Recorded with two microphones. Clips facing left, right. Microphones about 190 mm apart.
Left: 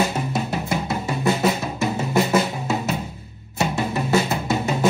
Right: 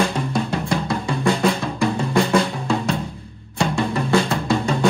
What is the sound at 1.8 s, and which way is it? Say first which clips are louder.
Music: right 2 dB; 5° left (ahead or behind).